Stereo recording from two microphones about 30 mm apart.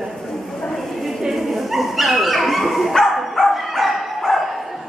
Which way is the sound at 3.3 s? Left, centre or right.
Centre.